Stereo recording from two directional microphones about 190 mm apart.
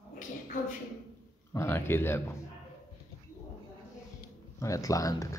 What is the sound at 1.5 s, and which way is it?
Speech, 15° left (ahead or behind).